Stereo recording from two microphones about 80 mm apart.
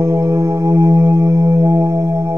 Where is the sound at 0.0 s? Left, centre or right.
Right.